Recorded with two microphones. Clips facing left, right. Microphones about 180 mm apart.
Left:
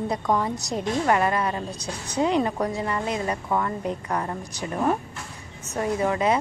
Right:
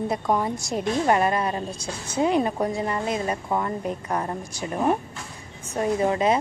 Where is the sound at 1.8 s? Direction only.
5° right (ahead or behind).